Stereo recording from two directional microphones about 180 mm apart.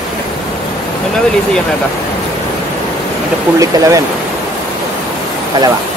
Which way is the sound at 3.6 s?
20° right (ahead or behind).